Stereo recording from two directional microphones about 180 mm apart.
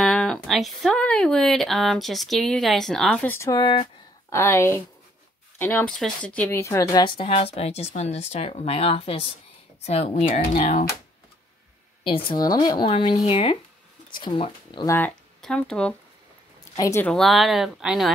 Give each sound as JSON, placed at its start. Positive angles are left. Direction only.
{"t": 0.0, "sound": "speech", "side_deg": 5}
{"t": 3.6, "sound": "speech", "side_deg": 30}
{"t": 4.3, "sound": "speech", "side_deg": 15}
{"t": 12.0, "sound": "speech", "side_deg": 30}
{"t": 14.9, "sound": "speech", "side_deg": 10}
{"t": 16.7, "sound": "speech", "side_deg": 15}
{"t": 17.1, "sound": "speech", "side_deg": 0}